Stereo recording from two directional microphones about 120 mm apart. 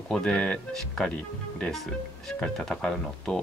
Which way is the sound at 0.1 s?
5° left (ahead or behind).